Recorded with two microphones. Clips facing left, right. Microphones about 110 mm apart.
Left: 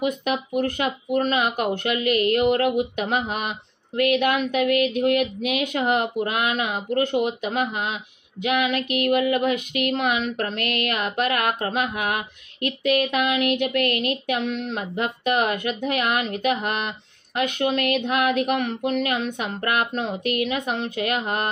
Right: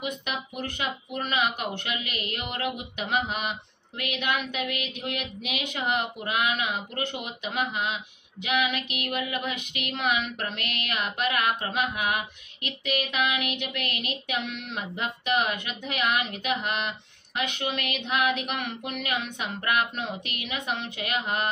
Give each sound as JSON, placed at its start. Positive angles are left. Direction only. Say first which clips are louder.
{"t": 0.0, "sound": "speech", "louder": "left 9 dB", "side_deg": 40}